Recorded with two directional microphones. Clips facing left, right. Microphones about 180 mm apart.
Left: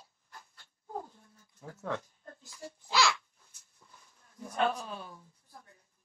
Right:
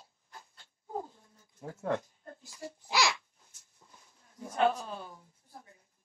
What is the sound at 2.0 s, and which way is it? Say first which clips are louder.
Babbling: right 2 dB; 15° right (ahead or behind).